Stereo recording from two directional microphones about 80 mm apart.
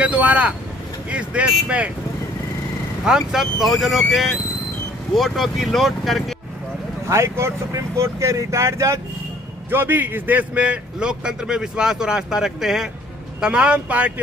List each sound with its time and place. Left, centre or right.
0.0 s speech: centre
3.1 s speech: centre
7.1 s speech: right
9.7 s a man's voice: right